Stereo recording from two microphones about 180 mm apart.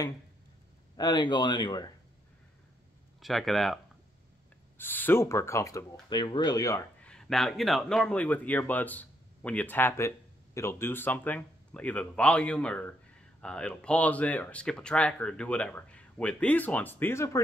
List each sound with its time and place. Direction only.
0.9 s speech: 25° left (ahead or behind)
3.2 s speech: centre (ahead or behind); by 6.8 s 20° left (ahead or behind)
7.0 s speech: 5° left (ahead or behind)